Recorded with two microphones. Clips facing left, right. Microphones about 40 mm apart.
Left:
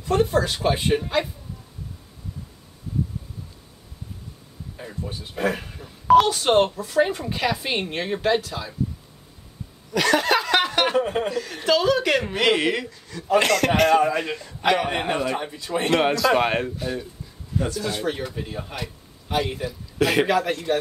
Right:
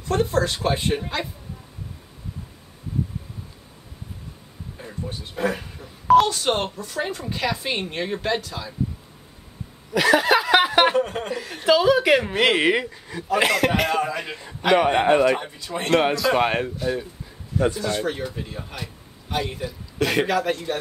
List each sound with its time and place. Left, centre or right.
0.1 s a sound: centre
4.7 s speech: centre
9.9 s snicker: centre
11.0 s speech: centre
11.2 s speech: centre
13.9 s a man's voice: centre
14.8 s a man's voice: centre
15.6 s a man's voice: centre
17.6 s speech: centre
17.8 s a man's voice: centre